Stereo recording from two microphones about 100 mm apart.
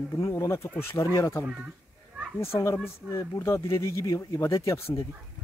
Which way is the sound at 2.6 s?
25° left (ahead or behind).